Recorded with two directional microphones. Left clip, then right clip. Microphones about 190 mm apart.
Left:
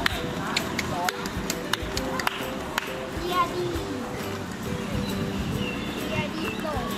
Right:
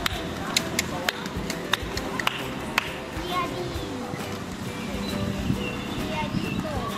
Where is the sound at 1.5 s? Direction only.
15° left (ahead or behind).